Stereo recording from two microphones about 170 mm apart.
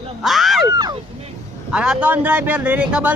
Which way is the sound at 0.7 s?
20° right (ahead or behind).